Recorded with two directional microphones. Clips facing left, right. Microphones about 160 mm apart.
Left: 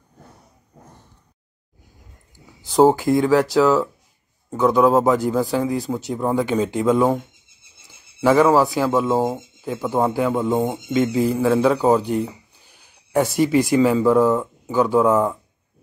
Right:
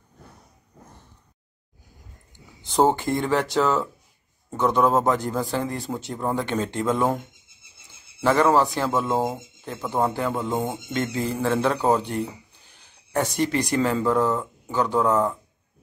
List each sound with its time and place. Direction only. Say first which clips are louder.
2.3 s speech: left 5 dB; centre (ahead or behind)
8.2 s speech: left 4 dB; 5° left (ahead or behind)